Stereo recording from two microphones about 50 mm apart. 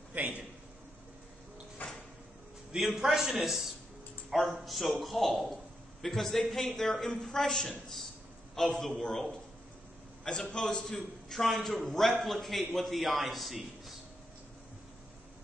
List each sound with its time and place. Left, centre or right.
0.1 s a sound: right
1.8 s cupboard open or close: left
2.7 s a man's voice: centre
10.4 s a woman's voice: centre
11.3 s a man's voice: centre